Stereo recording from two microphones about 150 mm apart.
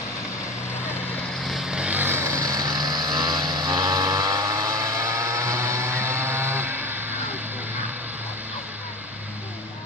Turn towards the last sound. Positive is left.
turn(degrees=-10)  # may be behind; listen again after turning